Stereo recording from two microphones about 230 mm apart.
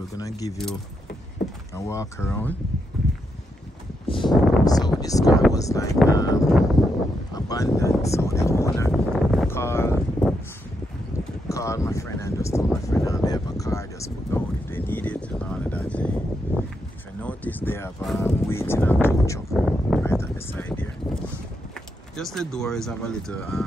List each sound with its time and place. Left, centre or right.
0.2 s speech: centre
1.8 s speech: centre
4.1 s speech: centre
8.9 s speech: centre
9.5 s a sound: centre
11.4 s speech: centre
19.5 s speech: centre
20.0 s a sound: centre
22.1 s speech: centre